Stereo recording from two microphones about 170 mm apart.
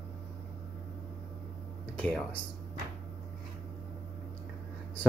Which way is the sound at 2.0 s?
10° left (ahead or behind).